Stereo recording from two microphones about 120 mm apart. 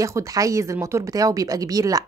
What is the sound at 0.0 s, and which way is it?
A woman's voice, 25° right (ahead or behind).